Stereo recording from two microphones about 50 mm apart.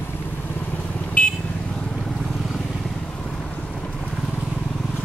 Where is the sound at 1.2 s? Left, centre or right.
Left.